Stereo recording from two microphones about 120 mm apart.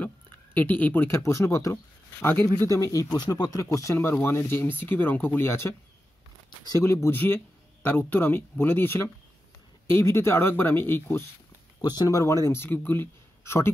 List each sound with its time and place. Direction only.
0.6 s speech: 15° left (ahead or behind)
6.8 s speech: 20° left (ahead or behind)
11.8 s speech: 35° left (ahead or behind)